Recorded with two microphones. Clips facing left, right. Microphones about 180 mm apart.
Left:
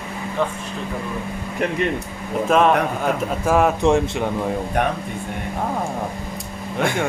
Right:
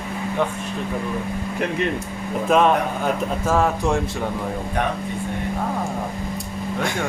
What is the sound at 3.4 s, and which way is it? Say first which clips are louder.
Speech: left 5 dB; 15° left (ahead or behind).